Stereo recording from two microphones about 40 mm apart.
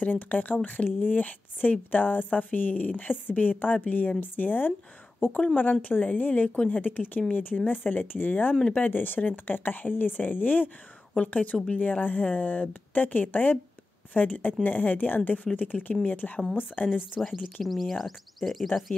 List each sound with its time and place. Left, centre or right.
0.0 s a woman's voice: left
17.2 s speech: centre